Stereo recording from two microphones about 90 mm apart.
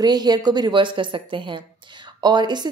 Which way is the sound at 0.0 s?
50° right (ahead or behind).